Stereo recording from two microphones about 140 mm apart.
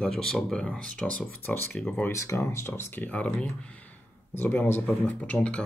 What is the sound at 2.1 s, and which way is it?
Speech, 20° left (ahead or behind).